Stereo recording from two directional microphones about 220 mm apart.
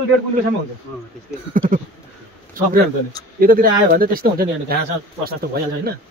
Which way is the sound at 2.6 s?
40° right (ahead or behind).